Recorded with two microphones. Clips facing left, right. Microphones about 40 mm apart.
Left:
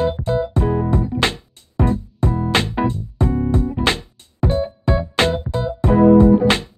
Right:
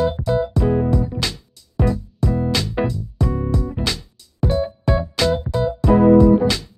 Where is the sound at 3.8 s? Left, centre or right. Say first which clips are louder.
Left 6 dB; left.